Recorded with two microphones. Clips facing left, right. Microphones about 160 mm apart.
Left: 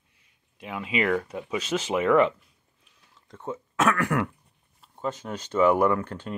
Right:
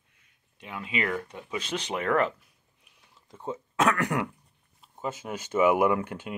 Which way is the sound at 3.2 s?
10° right (ahead or behind).